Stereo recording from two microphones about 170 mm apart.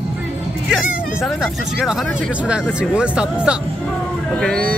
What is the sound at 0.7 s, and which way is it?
Speech, centre (ahead or behind).